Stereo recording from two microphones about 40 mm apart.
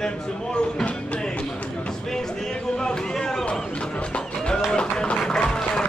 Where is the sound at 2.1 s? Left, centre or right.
Centre.